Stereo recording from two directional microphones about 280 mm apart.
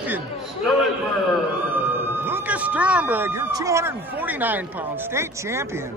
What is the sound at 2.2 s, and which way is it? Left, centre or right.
Speech, centre.